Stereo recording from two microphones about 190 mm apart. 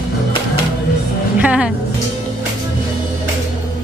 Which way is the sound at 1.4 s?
5° right (ahead or behind).